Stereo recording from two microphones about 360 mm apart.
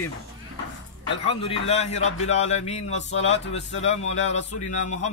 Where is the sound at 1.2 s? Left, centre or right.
Centre.